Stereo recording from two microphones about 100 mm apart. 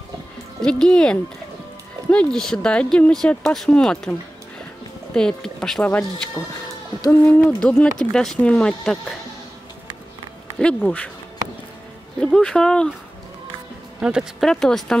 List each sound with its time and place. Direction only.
0.6 s speech: 10° left (ahead or behind)
5.1 s speech: 5° left (ahead or behind)
6.4 s speech: 35° left (ahead or behind)
7.1 s speech: 15° left (ahead or behind)
12.2 s speech: 10° left (ahead or behind)
13.9 s speech: 10° right (ahead or behind)
14.4 s speech: 5° left (ahead or behind)